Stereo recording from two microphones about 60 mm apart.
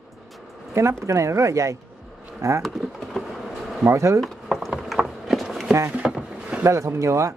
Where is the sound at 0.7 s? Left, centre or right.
Right.